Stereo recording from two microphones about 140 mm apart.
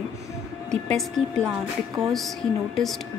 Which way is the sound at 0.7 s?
5° left (ahead or behind).